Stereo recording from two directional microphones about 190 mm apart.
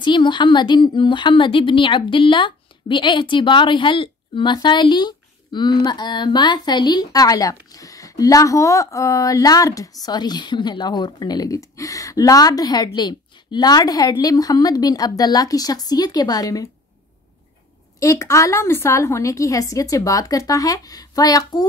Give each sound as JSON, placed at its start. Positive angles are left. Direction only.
{"t": 0.0, "sound": "a woman's voice", "side_deg": 25}
{"t": 17.9, "sound": "a woman's voice", "side_deg": 15}